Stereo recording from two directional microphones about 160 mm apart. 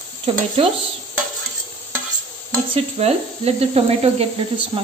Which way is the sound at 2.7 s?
40° right (ahead or behind).